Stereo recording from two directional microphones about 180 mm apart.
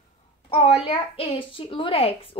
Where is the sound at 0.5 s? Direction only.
30° left (ahead or behind).